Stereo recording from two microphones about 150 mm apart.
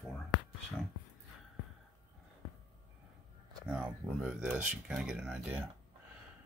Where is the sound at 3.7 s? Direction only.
10° right (ahead or behind).